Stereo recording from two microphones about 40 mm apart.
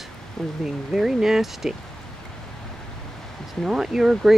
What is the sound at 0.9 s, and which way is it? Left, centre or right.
Speech, centre.